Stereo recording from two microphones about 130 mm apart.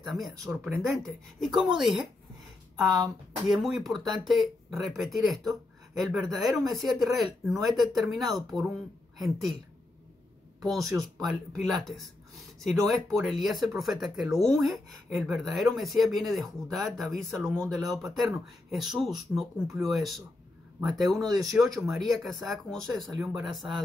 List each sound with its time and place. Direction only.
0.5 s speech: 20° right (ahead or behind)
0.9 s speech: centre (ahead or behind)
3.4 s speech: centre (ahead or behind)
8.3 s speech: 30° right (ahead or behind)
9.2 s speech: centre (ahead or behind)
10.6 s speech: centre (ahead or behind)
21.2 s speech: 30° right (ahead or behind)
21.5 s speech: centre (ahead or behind)